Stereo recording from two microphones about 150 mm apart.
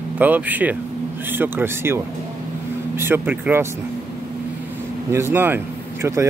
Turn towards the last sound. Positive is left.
turn(degrees=-20)  # may be behind; listen again after turning